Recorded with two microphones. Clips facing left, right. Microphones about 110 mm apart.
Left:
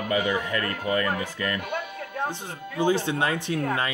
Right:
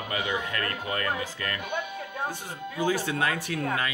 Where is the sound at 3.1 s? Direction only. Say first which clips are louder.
Left 3 dB; 25° left (ahead or behind).